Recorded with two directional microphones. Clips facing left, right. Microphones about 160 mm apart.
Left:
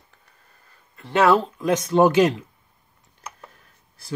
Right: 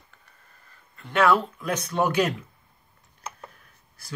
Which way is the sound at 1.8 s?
25° left (ahead or behind).